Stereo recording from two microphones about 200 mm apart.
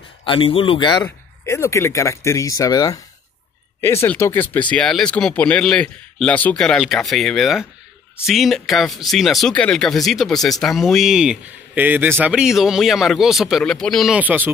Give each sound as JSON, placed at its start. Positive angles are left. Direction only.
{"t": 0.2, "sound": "speech", "side_deg": 25}
{"t": 1.0, "sound": "speech", "side_deg": 15}